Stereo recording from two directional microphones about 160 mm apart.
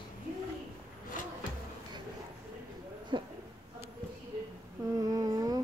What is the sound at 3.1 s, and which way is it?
Speech, 30° right (ahead or behind).